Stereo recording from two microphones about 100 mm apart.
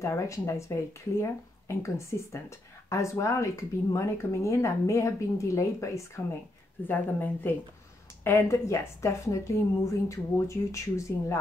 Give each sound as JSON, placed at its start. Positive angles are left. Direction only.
{"t": 0.0, "sound": "speech", "side_deg": 30}
{"t": 6.9, "sound": "speech", "side_deg": 20}